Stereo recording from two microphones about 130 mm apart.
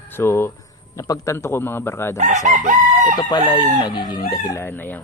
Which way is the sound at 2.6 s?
80° right.